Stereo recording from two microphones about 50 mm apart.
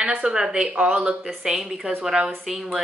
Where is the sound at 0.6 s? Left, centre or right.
Right.